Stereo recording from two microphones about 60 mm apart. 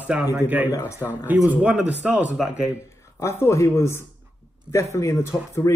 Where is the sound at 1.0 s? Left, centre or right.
Left.